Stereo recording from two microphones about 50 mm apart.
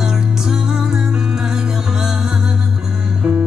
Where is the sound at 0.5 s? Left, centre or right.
Centre.